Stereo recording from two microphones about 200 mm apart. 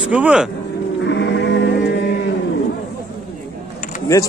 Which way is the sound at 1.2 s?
60° left (ahead or behind).